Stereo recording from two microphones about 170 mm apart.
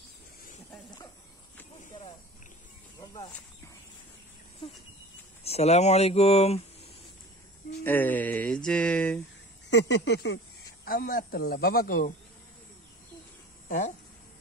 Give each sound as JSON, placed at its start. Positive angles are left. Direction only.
{"t": 5.4, "sound": "speech", "side_deg": 40}
{"t": 7.8, "sound": "speech", "side_deg": 10}
{"t": 9.7, "sound": "speech", "side_deg": 90}
{"t": 10.9, "sound": "a man's voice", "side_deg": 55}
{"t": 13.7, "sound": "speech", "side_deg": 50}